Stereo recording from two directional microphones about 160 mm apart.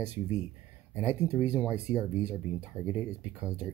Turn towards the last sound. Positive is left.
turn(degrees=-10)  # may be behind; listen again after turning